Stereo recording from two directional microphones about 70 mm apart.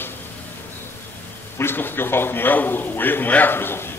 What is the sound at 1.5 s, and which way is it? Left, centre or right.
A man's voice, left.